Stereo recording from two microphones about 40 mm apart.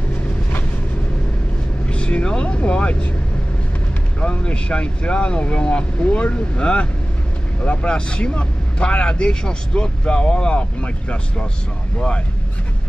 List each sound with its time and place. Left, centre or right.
1.9 s speech: left
4.5 s speech: left